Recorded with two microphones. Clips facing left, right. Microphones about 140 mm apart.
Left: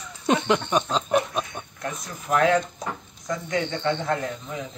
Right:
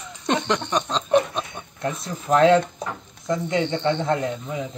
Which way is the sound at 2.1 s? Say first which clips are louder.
Right 5 dB; 25° right (ahead or behind).